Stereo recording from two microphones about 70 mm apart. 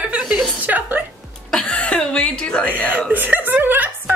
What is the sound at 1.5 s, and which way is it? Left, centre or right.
Speech, centre.